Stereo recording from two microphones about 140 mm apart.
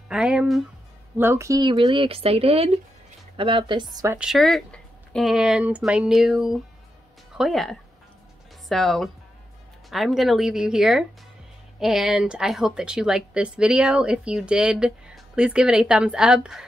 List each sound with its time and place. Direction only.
0.1 s a woman's voice: 5° right (ahead or behind)
1.1 s speech: 15° right (ahead or behind)
4.2 s a woman's voice: centre (ahead or behind)